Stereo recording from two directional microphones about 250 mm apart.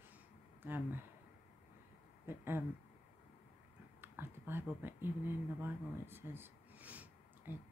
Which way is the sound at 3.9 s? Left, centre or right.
Centre.